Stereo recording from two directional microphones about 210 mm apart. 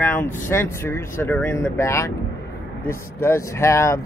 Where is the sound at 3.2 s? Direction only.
15° left (ahead or behind).